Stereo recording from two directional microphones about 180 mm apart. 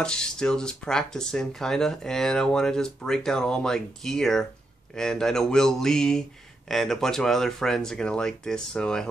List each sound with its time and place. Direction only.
0.0 s speech: 5° left (ahead or behind)